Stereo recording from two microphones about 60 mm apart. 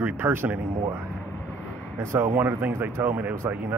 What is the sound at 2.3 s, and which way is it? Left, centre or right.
Speech, right.